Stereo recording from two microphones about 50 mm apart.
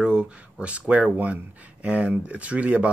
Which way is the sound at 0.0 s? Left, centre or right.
Centre.